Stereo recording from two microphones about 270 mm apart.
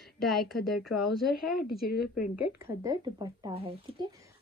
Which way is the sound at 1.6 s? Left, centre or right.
Left.